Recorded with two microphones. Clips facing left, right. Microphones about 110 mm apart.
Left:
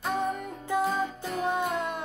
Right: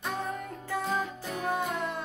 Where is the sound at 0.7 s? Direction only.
20° left (ahead or behind).